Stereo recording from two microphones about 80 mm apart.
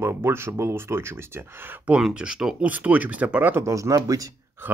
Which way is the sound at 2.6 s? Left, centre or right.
Centre.